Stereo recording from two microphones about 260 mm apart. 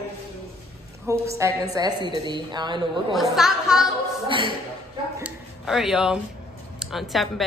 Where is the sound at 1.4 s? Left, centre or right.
Centre.